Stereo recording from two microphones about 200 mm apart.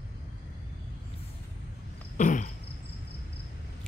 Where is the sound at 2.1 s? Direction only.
40° left (ahead or behind).